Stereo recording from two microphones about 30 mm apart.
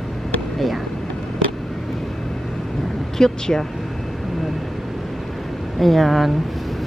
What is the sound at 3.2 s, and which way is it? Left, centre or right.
Speech, centre.